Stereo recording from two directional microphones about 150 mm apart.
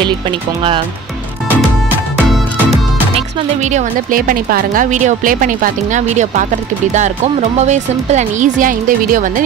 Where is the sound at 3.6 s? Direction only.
55° right (ahead or behind).